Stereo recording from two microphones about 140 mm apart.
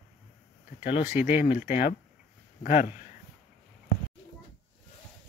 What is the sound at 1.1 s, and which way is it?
Speech, 15° right (ahead or behind).